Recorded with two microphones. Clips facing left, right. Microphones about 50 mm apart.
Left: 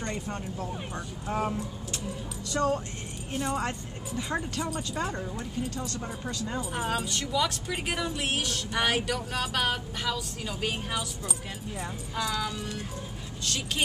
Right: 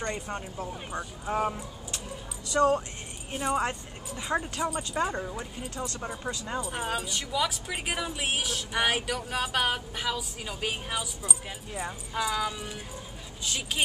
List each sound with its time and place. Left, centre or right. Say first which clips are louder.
0.0 s speech: right 1 dB; centre
2.5 s speech: right 4 dB; right
3.3 s speech: right 2 dB; centre
6.6 s speech: left 2 dB; centre